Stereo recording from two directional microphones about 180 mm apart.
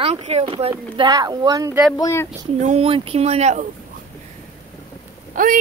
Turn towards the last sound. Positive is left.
turn(degrees=-50)  # may be behind; listen again after turning